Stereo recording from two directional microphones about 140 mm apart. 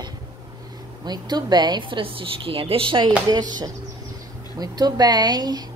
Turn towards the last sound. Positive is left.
turn(degrees=-30)  # may be behind; listen again after turning